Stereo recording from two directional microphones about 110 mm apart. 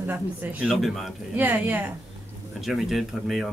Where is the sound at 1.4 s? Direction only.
15° right (ahead or behind).